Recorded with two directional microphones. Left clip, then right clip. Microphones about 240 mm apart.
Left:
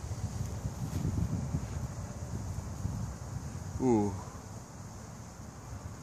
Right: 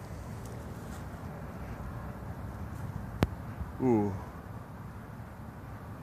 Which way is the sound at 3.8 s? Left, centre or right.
Centre.